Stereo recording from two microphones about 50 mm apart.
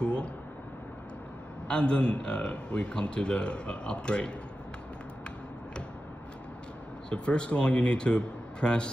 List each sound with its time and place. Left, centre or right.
0.0 s a sound: left
1.7 s a man's voice: left
7.1 s a man's voice: left